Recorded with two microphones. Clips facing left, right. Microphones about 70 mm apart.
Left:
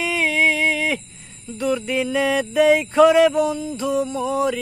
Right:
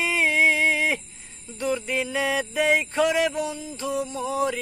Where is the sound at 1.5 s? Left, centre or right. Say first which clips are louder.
Left 4 dB; centre.